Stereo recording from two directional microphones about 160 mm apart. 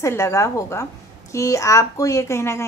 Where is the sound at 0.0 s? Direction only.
20° left (ahead or behind).